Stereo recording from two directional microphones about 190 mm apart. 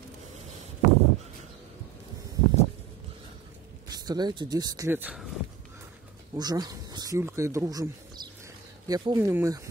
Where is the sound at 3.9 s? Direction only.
20° right (ahead or behind).